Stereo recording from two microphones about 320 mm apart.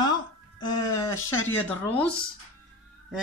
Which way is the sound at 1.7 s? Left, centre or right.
Centre.